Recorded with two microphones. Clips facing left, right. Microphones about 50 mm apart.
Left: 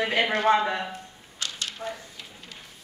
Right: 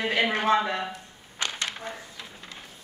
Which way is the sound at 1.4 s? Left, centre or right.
Right.